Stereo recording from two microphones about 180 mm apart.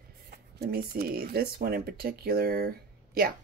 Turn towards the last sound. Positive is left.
turn(degrees=-55)  # may be behind; listen again after turning